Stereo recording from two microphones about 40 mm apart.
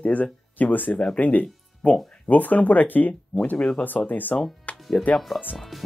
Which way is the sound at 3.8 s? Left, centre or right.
Left.